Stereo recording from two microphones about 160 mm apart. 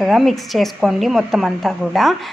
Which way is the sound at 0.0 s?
Centre (ahead or behind).